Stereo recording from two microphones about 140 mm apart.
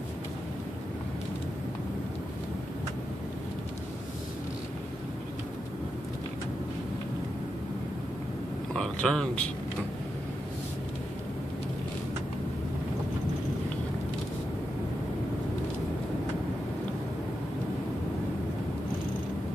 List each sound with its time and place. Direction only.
8.7 s speech: 5° left (ahead or behind)